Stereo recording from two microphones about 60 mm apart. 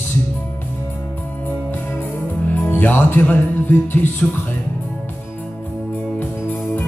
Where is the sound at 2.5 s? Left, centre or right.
Left.